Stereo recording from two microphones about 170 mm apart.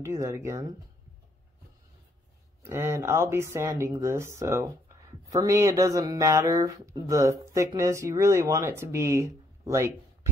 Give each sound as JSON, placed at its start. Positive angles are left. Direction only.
{"t": 0.0, "sound": "speech", "side_deg": -15}
{"t": 2.6, "sound": "speech", "side_deg": -15}